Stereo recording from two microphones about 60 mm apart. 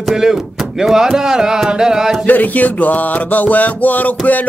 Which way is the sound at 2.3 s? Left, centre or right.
Left.